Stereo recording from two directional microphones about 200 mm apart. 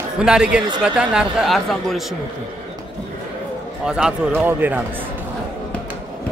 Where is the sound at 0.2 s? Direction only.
5° right (ahead or behind).